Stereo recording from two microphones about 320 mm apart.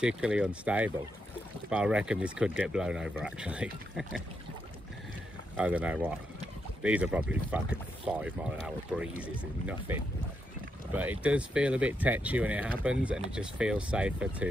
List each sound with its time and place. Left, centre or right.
0.0 s speech: centre
5.6 s speech: centre
11.0 s speech: centre